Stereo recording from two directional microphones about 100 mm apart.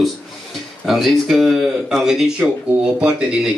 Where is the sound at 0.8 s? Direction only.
5° right (ahead or behind).